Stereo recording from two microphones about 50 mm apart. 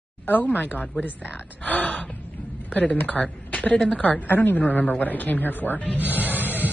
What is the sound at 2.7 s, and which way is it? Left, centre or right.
A woman's voice, left.